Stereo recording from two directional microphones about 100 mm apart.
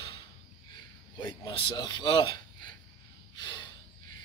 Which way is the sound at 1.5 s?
55° left (ahead or behind).